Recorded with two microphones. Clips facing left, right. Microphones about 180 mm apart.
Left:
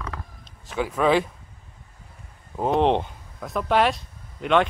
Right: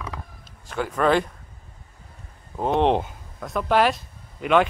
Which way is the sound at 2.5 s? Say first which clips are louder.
Even; centre (ahead or behind).